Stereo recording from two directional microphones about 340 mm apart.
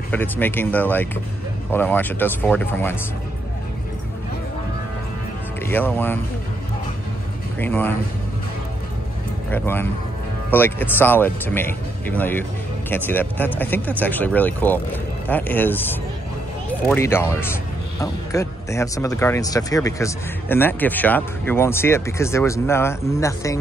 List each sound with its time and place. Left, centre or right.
0.1 s speech: centre
5.6 s speech: centre
7.5 s speech: centre
9.5 s speech: centre
16.9 s speech: centre